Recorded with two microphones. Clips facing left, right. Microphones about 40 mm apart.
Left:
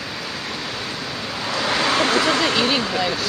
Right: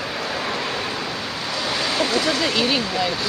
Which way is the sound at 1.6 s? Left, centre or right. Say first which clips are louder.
Left 4 dB; left.